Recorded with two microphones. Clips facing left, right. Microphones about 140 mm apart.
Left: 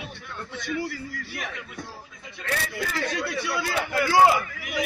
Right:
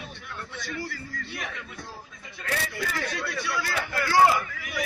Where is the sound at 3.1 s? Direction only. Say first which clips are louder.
Left 3 dB; 15° left (ahead or behind).